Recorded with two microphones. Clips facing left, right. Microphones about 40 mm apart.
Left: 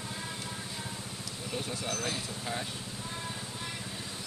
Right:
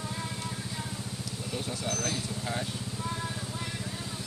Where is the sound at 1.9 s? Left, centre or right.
Centre.